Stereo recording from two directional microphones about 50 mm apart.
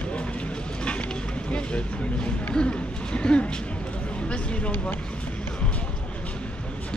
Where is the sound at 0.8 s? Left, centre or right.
Left.